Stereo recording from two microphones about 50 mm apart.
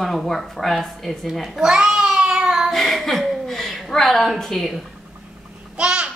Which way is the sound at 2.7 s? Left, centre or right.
Centre.